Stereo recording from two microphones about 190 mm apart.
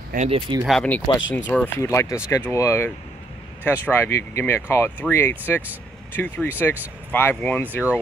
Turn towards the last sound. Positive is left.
turn(degrees=10)  # may be behind; listen again after turning